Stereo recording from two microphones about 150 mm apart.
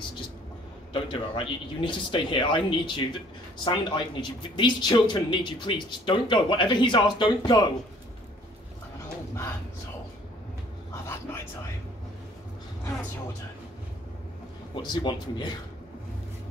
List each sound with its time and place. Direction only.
0.9 s speech: 35° left (ahead or behind)
11.1 s a sound: 15° left (ahead or behind)
14.8 s speech: 30° left (ahead or behind)